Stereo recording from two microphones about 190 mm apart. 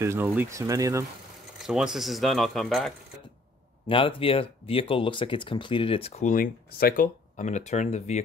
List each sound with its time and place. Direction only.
0.0 s speech: 10° right (ahead or behind)
1.6 s speech: centre (ahead or behind)
3.8 s speech: 25° left (ahead or behind)